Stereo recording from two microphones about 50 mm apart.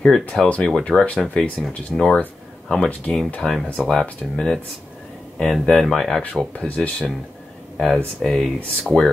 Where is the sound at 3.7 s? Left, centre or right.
Left.